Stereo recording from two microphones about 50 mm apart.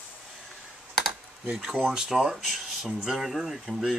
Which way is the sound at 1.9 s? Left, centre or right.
Centre.